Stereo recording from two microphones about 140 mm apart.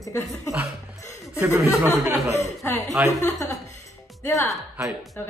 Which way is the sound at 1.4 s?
20° right (ahead or behind).